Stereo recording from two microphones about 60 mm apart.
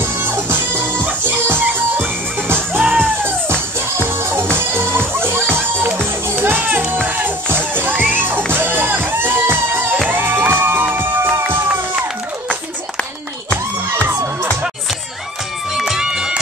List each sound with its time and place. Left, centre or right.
0.0 s music: right
15.7 s run: centre